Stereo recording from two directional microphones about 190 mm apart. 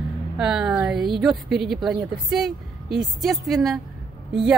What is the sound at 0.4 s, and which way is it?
Speech, 5° right (ahead or behind).